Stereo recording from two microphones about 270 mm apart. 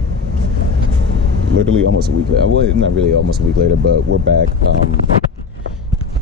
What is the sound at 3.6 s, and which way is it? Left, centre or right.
Speech, right.